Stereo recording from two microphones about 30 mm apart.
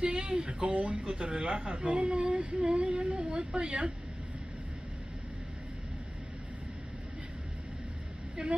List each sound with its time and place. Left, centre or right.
0.0 s speech: right
0.3 s speech: right
0.6 s speech: right
1.1 s speech: right
2.6 s speech: right
8.4 s speech: right